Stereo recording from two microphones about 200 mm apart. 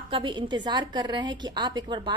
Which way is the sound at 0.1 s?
25° right (ahead or behind).